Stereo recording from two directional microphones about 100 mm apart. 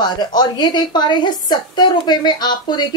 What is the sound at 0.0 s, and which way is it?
A woman's voice, 45° left (ahead or behind).